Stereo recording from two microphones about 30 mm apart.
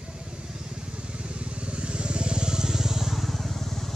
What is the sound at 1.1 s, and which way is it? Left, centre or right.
Vehicle, right.